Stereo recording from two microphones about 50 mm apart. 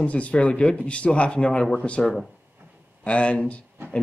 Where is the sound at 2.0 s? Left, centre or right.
Centre.